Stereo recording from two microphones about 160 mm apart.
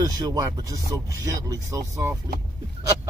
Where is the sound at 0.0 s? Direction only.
25° right (ahead or behind).